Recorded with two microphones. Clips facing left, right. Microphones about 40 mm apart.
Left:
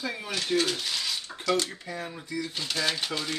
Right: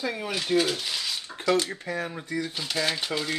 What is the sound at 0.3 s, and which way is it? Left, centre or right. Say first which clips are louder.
Speech: right 2 dB; centre.